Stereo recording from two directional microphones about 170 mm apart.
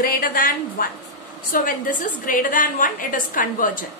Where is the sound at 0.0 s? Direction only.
55° left (ahead or behind).